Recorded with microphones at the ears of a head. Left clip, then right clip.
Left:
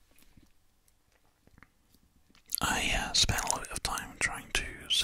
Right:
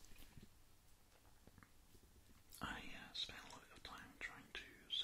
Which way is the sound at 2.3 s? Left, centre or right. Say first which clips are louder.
Left 19 dB; left.